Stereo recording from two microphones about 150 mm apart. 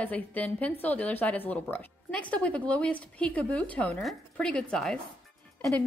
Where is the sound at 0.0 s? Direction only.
10° left (ahead or behind).